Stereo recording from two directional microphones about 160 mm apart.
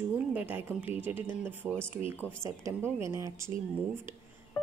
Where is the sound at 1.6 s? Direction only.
5° left (ahead or behind).